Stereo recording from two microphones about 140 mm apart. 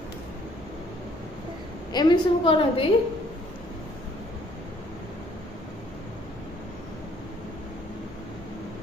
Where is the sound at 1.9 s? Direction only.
30° left (ahead or behind).